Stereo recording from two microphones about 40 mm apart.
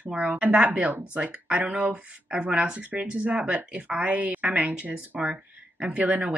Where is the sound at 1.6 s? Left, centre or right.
Right.